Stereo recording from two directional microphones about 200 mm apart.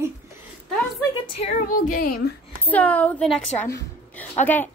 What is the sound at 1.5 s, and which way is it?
Speech, 45° left (ahead or behind).